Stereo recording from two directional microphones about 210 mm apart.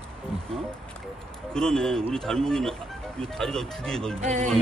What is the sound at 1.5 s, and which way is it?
Speech, 5° left (ahead or behind).